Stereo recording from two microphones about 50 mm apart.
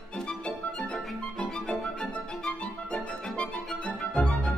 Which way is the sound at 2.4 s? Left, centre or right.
Centre.